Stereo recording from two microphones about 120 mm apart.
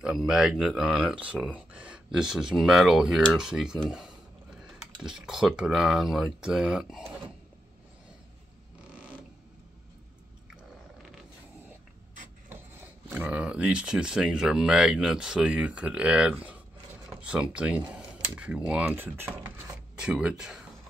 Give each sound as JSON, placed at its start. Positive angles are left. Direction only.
{"t": 0.0, "sound": "speech", "side_deg": -5}
{"t": 8.9, "sound": "a sound", "side_deg": -10}
{"t": 10.5, "sound": "biting", "side_deg": -5}
{"t": 12.4, "sound": "speech", "side_deg": -15}
{"t": 20.0, "sound": "speech", "side_deg": -5}